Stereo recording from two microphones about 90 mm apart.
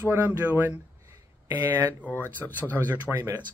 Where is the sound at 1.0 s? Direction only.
35° right (ahead or behind).